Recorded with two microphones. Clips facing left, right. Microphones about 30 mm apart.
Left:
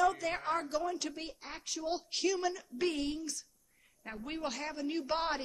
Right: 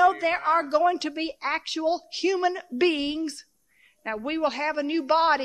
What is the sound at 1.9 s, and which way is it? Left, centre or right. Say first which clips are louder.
Speech: right 7 dB; right.